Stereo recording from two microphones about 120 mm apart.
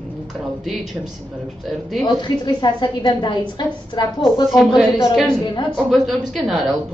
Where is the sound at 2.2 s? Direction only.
35° left (ahead or behind).